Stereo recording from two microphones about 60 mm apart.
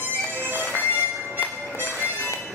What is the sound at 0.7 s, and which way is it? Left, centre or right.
Music, left.